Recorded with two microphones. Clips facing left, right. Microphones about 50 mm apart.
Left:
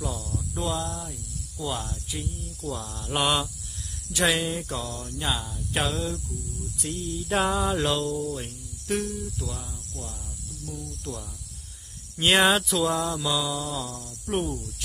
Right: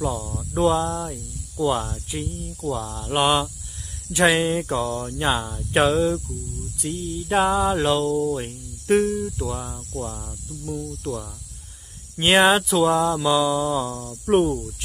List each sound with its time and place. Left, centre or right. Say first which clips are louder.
0.0 s cricket: right 6 dB; centre
0.4 s speech: right 11 dB; right
3.1 s cricket: right 5 dB; centre
4.1 s speech: right 6 dB; right
7.1 s a sound: right 5 dB; centre
8.2 s cricket: right 7 dB; right
9.6 s speech: right 9 dB; right
12.2 s a sound: right 4 dB; centre
12.8 s cricket: right 7 dB; right
14.4 s cricket: right 9 dB; right